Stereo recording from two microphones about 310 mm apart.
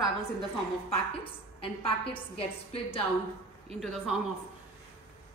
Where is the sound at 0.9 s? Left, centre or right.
Centre.